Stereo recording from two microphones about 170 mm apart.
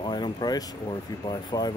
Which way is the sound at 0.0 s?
25° left (ahead or behind).